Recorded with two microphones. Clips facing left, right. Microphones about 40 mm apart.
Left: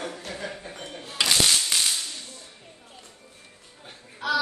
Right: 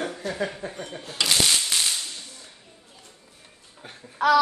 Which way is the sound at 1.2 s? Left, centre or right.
Centre.